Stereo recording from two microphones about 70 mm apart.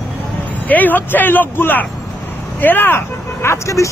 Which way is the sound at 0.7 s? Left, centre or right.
Left.